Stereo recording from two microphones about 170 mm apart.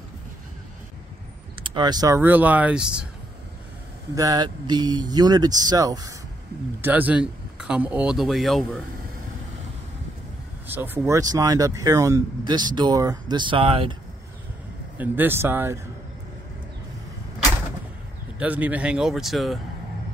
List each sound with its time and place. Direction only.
1.6 s speech: 25° right (ahead or behind); by 3.1 s 5° right (ahead or behind)
4.1 s speech: 20° right (ahead or behind)
6.8 s speech: 10° right (ahead or behind)
10.7 s speech: 10° right (ahead or behind); by 13.9 s 30° right (ahead or behind)
15.0 s speech: 10° right (ahead or behind)
18.4 s speech: 10° right (ahead or behind)